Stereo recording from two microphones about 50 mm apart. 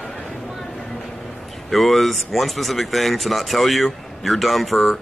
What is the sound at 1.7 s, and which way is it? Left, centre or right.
Speech, centre.